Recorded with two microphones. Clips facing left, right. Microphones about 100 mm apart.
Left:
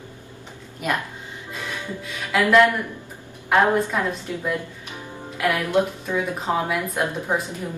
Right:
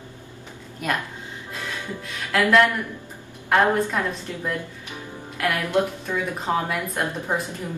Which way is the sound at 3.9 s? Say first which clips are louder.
Left 2 dB; 15° left (ahead or behind).